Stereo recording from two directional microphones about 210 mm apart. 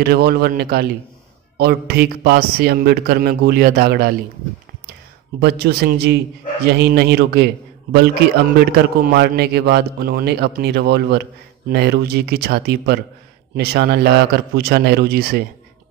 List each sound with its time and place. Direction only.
0.0 s a man's voice: 50° right (ahead or behind)
5.4 s a man's voice: 50° right (ahead or behind)